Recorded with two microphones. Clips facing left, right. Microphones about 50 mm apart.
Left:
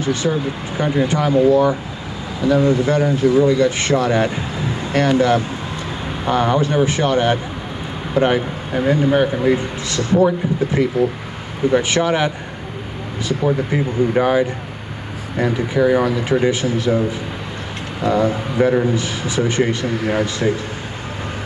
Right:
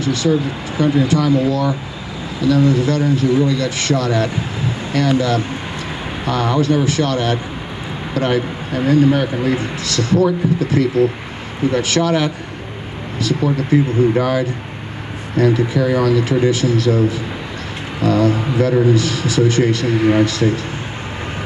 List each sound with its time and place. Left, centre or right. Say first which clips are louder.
0.0 s a man's voice: right 2 dB; left